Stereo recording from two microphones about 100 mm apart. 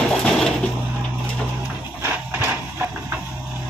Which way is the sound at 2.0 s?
25° right (ahead or behind).